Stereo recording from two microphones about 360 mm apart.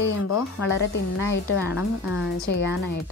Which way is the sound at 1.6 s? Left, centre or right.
Centre.